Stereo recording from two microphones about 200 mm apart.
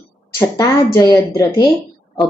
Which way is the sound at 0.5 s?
15° left (ahead or behind).